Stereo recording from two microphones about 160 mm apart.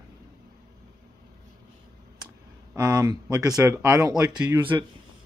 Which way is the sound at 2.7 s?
20° right (ahead or behind).